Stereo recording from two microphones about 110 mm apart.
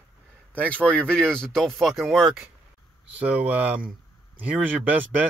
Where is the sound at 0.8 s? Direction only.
10° left (ahead or behind).